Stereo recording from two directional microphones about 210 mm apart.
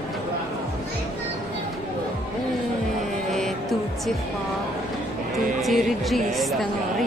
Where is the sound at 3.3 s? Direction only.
Centre (ahead or behind).